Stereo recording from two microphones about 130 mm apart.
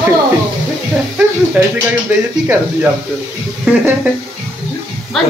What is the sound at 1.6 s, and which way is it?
Speech, 10° right (ahead or behind).